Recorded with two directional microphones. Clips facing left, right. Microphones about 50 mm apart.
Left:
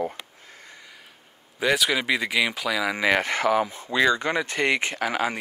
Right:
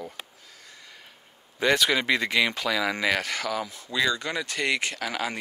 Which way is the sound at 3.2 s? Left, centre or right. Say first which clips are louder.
Left 7 dB; left.